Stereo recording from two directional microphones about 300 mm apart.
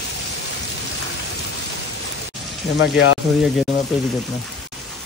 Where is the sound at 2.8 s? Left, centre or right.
Left.